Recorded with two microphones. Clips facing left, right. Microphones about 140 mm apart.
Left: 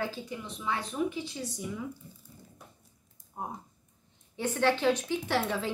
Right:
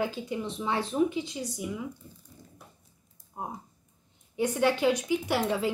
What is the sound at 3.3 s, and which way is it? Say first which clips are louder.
Typing: right 1 dB; 15° right (ahead or behind).